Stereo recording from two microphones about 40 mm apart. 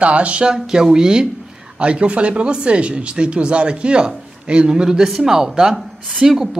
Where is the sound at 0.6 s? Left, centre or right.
Centre.